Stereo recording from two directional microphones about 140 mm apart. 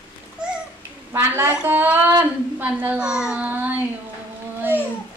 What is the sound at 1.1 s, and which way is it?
A woman's voice, 15° right (ahead or behind).